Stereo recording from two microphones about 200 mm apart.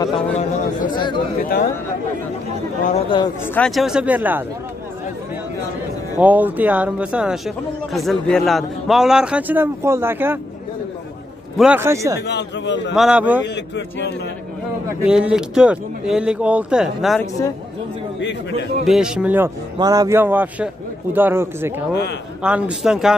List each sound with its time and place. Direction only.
0.9 s speech: 25° left (ahead or behind)
1.4 s speech: 45° left (ahead or behind)
2.9 s speech: 25° left (ahead or behind)
3.5 s speech: centre (ahead or behind)
6.1 s speech: 10° right (ahead or behind)
11.5 s speech: 5° right (ahead or behind)
12.3 s speech: 60° left (ahead or behind)
12.9 s speech: 5° right (ahead or behind)
13.4 s speech: 60° left (ahead or behind)
15.0 s speech: 5° right (ahead or behind)
18.9 s speech: 5° right (ahead or behind)